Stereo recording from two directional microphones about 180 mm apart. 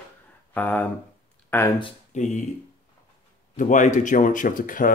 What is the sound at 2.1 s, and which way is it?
Speech, 40° left (ahead or behind).